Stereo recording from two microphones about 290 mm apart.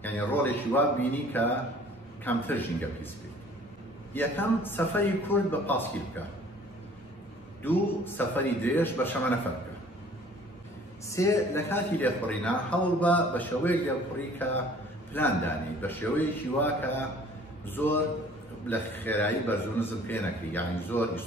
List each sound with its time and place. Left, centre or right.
0.0 s a man's voice: centre
4.1 s a man's voice: centre
7.6 s a man's voice: centre
11.1 s a man's voice: centre